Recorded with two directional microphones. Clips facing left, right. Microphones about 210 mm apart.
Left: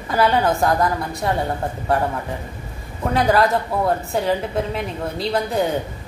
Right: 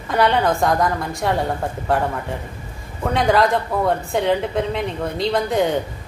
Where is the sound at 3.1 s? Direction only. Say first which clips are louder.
Even; 5° left (ahead or behind).